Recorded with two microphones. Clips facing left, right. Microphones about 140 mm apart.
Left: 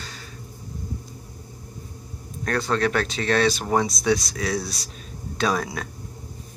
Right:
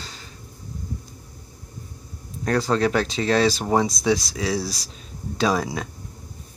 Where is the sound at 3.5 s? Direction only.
25° right (ahead or behind).